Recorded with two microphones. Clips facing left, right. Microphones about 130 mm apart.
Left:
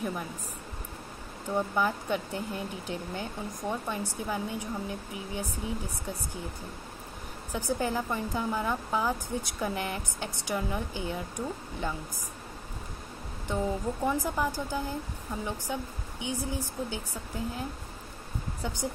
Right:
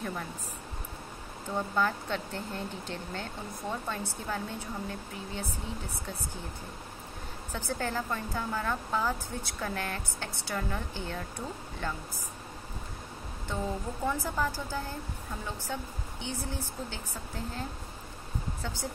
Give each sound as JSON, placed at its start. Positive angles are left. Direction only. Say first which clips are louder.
{"t": 0.0, "sound": "speech", "louder": "left 3 dB", "side_deg": 10}
{"t": 1.5, "sound": "speech", "louder": "left 2 dB", "side_deg": 15}
{"t": 7.5, "sound": "speech", "louder": "left 4 dB", "side_deg": 15}
{"t": 13.5, "sound": "speech", "louder": "left 4 dB", "side_deg": 15}